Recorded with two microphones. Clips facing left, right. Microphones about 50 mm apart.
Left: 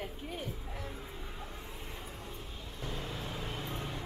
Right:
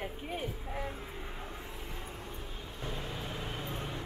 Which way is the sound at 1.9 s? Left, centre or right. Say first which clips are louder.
Right 2 dB; centre.